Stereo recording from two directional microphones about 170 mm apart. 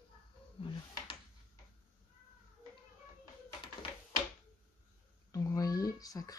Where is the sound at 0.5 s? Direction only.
30° left (ahead or behind).